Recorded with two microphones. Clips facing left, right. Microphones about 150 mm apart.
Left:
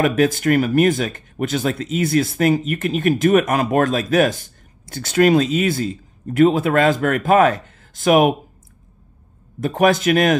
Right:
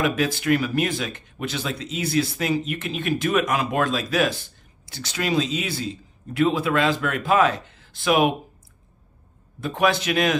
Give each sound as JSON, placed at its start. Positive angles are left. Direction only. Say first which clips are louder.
{"t": 0.0, "sound": "speech", "louder": "left 6 dB", "side_deg": 45}
{"t": 9.6, "sound": "speech", "louder": "left 5 dB", "side_deg": 45}